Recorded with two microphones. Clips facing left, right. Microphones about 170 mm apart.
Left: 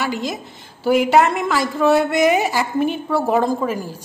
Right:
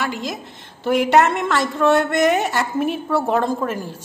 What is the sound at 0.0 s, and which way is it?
A woman's voice, centre (ahead or behind).